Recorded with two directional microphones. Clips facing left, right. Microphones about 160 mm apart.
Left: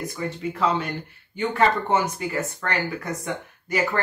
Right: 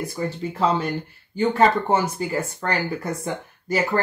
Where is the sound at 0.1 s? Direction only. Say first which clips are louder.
Right 2 dB; 35° right (ahead or behind).